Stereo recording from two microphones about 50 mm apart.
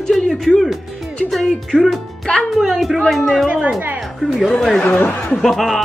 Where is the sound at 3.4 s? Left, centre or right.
Right.